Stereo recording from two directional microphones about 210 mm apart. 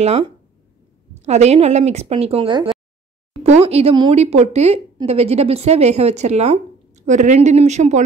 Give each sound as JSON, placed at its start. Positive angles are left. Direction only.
{"t": 0.0, "sound": "a woman's voice", "side_deg": -30}